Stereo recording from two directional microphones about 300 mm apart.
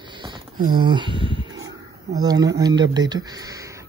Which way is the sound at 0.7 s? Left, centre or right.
Centre.